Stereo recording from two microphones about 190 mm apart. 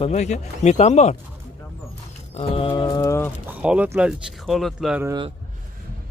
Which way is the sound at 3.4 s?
5° right (ahead or behind).